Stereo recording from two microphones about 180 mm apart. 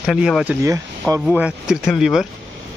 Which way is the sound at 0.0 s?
Centre (ahead or behind).